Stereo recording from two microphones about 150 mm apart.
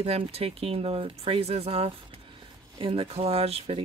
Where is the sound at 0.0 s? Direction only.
40° right (ahead or behind).